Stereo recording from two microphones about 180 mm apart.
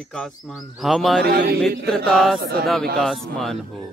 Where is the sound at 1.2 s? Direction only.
60° right (ahead or behind).